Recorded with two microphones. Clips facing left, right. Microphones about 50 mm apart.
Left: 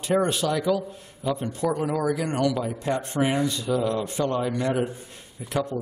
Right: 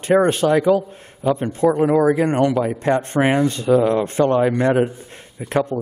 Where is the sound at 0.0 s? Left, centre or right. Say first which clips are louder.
Right 8 dB; right.